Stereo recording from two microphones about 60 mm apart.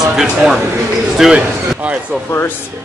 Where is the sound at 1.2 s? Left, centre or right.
Centre.